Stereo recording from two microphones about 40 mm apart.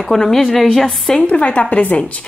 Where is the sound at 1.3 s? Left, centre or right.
Left.